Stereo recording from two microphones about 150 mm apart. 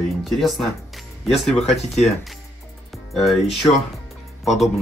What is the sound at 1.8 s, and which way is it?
Speech, 45° left (ahead or behind).